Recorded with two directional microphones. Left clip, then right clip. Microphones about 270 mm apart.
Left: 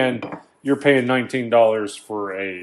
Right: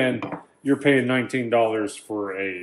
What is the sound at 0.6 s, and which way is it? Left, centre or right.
Speech, left.